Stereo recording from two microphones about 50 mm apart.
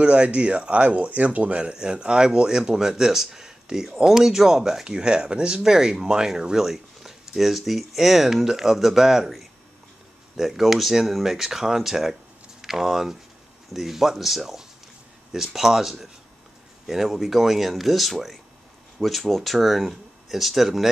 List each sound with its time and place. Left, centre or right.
0.0 s speech: right; by 20.9 s centre